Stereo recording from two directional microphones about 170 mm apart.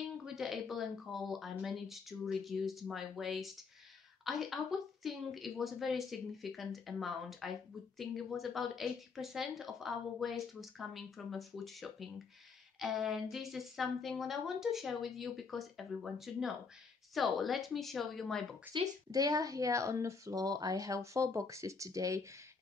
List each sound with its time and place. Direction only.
0.2 s speech: centre (ahead or behind)
18.7 s speech: 25° right (ahead or behind)